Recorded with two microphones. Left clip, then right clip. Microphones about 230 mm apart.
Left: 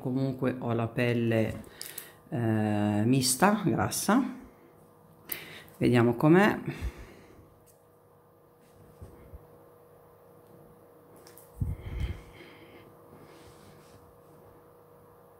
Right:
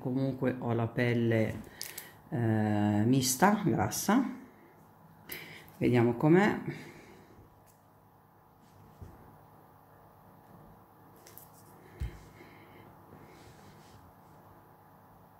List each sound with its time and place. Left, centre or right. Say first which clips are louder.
0.0 s speech: left 2 dB; centre
5.2 s speech: left 2 dB; centre